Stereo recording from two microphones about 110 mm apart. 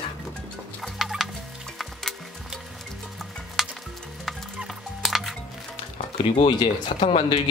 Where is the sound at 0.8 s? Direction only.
Centre (ahead or behind).